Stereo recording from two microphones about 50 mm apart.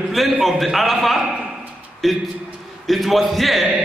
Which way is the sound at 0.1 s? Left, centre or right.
Centre.